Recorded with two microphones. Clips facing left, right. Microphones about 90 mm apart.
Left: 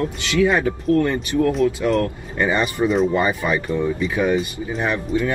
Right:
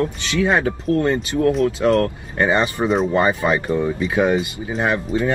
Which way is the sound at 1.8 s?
45° right (ahead or behind).